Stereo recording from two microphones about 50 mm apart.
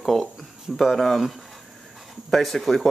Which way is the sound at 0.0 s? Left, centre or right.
Centre.